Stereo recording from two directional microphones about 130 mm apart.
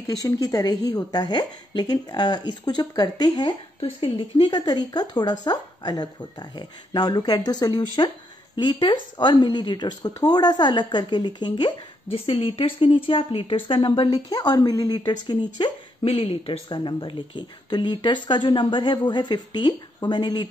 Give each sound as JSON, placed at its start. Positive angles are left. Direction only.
{"t": 0.0, "sound": "speech", "side_deg": 30}
{"t": 12.1, "sound": "speech", "side_deg": 45}